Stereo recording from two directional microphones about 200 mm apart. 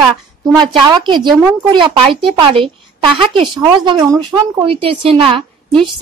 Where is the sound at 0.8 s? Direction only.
25° right (ahead or behind).